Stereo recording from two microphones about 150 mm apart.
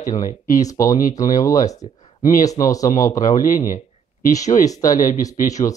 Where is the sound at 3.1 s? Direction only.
60° left (ahead or behind).